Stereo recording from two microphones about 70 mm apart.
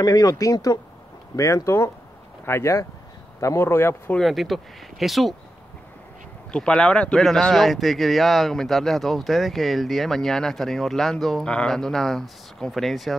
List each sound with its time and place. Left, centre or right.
0.0 s speech: left
1.3 s speech: left
4.2 s speech: centre
6.5 s speech: centre